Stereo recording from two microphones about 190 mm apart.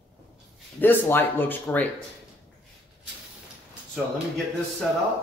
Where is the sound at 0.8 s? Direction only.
10° left (ahead or behind).